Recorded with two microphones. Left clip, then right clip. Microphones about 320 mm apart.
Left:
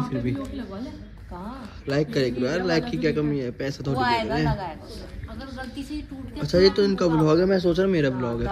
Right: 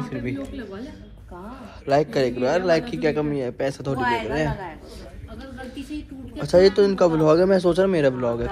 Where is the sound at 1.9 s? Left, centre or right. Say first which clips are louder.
Right 4 dB; centre.